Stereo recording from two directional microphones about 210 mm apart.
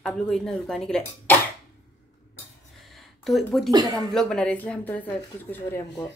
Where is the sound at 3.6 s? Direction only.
20° right (ahead or behind).